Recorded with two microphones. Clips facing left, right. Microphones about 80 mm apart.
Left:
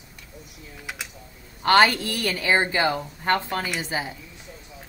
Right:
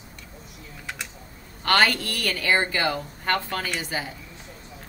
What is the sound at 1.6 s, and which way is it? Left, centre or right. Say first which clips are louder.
Speech: left 4 dB; left.